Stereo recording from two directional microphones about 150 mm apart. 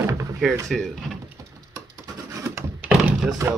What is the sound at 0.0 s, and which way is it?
Door, 20° right (ahead or behind).